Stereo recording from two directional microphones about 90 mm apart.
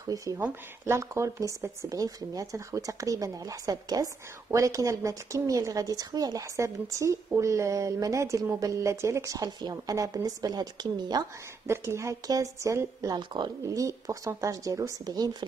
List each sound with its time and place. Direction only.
0.0 s speech: 40° right (ahead or behind)
9.6 s a woman's voice: 45° right (ahead or behind)
11.6 s speech: 30° right (ahead or behind)
13.1 s speech: 55° right (ahead or behind)
13.7 s speech: 40° right (ahead or behind)
15.0 s a woman's voice: 45° right (ahead or behind)